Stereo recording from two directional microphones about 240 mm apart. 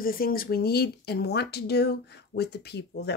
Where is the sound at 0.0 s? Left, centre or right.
Left.